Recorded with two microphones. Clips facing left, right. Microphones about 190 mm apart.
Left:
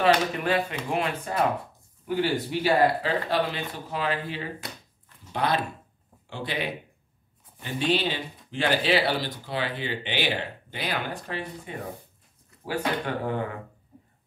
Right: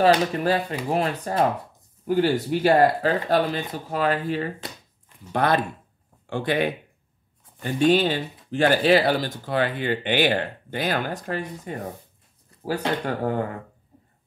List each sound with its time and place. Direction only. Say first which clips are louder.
0.0 s speech: right 4 dB; 40° right (ahead or behind)
2.6 s speech: right 4 dB; 45° right (ahead or behind)